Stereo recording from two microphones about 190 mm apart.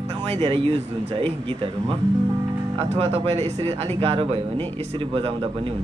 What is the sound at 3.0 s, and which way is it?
Speech, 35° right (ahead or behind).